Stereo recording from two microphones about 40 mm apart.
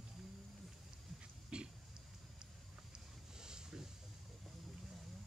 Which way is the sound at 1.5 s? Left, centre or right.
Right.